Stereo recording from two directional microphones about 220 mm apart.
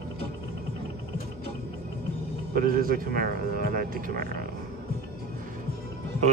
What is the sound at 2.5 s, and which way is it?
Speech, 40° right (ahead or behind).